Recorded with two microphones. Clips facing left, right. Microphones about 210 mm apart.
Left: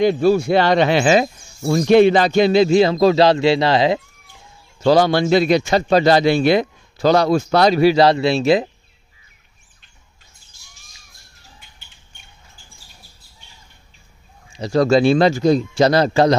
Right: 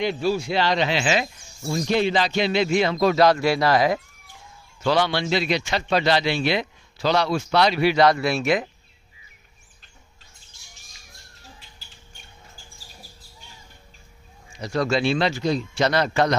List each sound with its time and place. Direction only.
0.0 s a man's voice: 50° left (ahead or behind)
1.6 s a man's voice: 60° left (ahead or behind); by 4.0 s 25° left (ahead or behind)
4.8 s a man's voice: 40° left (ahead or behind)
14.6 s a man's voice: 35° left (ahead or behind)